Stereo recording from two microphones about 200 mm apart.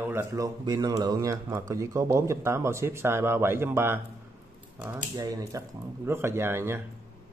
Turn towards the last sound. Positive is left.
turn(degrees=-10)  # may be behind; listen again after turning